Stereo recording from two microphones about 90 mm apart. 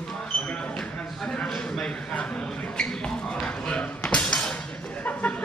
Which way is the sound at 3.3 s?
10° left (ahead or behind).